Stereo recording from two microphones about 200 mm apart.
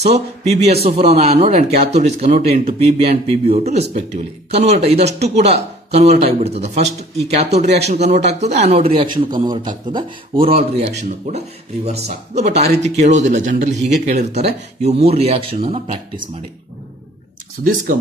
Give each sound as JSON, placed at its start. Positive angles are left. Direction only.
{"t": 0.0, "sound": "a man's voice", "side_deg": -30}
{"t": 17.6, "sound": "speech", "side_deg": -50}